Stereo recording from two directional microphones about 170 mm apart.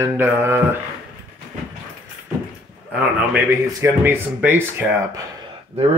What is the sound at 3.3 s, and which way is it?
Speech, 15° right (ahead or behind).